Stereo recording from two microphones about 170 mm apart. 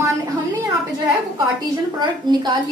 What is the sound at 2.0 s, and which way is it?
Speech, 25° right (ahead or behind).